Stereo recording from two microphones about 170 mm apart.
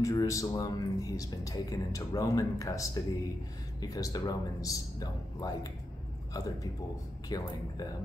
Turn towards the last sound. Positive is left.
turn(degrees=20)  # may be behind; listen again after turning